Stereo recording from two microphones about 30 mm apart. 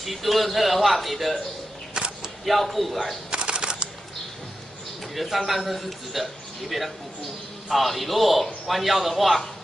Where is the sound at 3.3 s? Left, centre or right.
Right.